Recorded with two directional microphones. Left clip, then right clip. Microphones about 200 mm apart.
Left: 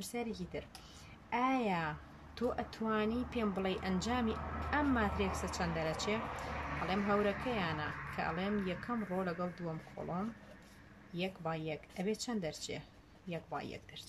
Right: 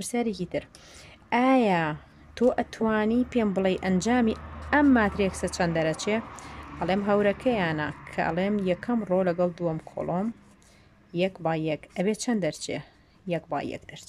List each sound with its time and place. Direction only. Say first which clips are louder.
0.0 s speech: right 12 dB; 45° right (ahead or behind)